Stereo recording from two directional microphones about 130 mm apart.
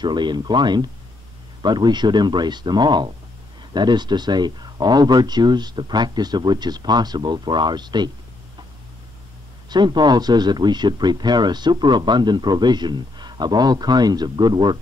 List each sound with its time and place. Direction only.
0.0 s speech: 35° right (ahead or behind)
9.7 s speech: 35° right (ahead or behind)